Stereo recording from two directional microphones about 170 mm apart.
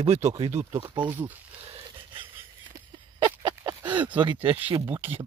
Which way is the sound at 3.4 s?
20° right (ahead or behind).